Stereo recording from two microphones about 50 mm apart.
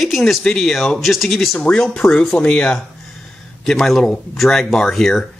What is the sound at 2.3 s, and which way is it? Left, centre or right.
Speech, left.